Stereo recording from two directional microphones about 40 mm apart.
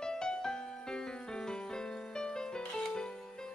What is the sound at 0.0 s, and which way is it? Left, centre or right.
Music, centre.